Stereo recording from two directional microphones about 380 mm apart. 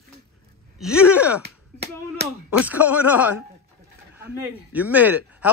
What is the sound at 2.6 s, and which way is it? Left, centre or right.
Speech, centre.